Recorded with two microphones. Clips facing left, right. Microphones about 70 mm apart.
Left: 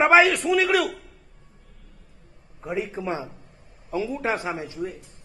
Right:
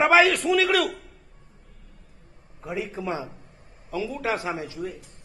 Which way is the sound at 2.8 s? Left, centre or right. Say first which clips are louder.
Left 1 dB; centre.